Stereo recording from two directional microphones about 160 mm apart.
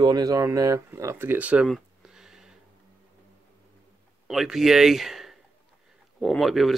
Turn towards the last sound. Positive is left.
turn(degrees=0)  # may be behind; listen again after turning